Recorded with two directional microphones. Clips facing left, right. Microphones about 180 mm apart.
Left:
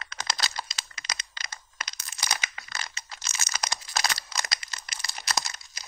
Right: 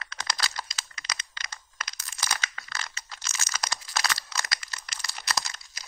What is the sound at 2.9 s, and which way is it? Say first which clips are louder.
Crumpling: left 1 dB; 20° left (ahead or behind).